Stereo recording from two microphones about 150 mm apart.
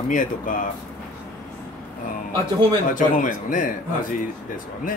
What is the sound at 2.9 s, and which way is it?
Speech, 65° left (ahead or behind).